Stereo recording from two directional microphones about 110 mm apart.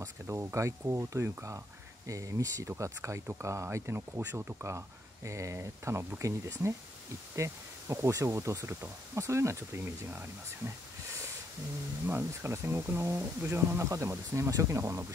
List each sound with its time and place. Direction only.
0.0 s speech: 25° right (ahead or behind)
12.1 s speech: 20° right (ahead or behind)